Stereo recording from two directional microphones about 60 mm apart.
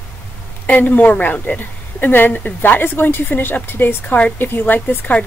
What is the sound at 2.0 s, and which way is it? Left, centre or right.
A woman's voice, left.